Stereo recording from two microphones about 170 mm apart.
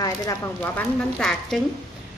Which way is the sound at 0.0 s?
20° left (ahead or behind).